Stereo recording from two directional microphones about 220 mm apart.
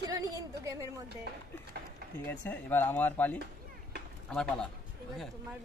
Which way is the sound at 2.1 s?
10° left (ahead or behind).